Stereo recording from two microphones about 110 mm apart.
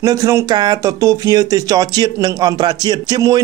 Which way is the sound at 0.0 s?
30° right (ahead or behind).